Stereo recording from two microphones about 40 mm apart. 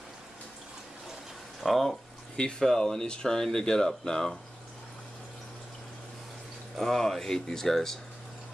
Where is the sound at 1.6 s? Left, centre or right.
Centre.